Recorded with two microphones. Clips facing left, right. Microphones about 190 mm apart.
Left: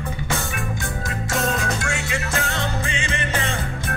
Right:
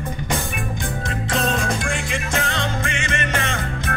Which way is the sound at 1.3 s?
25° right (ahead or behind).